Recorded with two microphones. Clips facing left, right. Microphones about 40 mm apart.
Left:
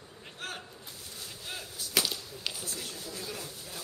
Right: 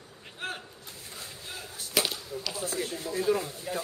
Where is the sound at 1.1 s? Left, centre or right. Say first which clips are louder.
Even; right.